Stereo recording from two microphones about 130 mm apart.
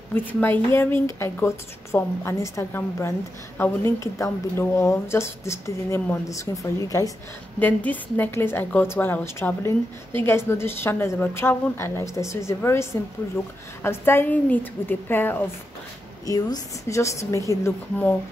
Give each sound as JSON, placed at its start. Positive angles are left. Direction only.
{"t": 0.1, "sound": "a woman's voice", "side_deg": 15}
{"t": 7.5, "sound": "a woman's voice", "side_deg": 15}
{"t": 13.8, "sound": "a woman's voice", "side_deg": 15}
{"t": 16.3, "sound": "speech", "side_deg": 30}